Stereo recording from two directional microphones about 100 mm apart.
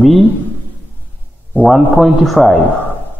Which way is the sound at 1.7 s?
Centre (ahead or behind).